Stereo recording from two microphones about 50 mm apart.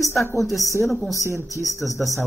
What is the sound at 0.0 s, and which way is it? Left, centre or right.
Speech, left.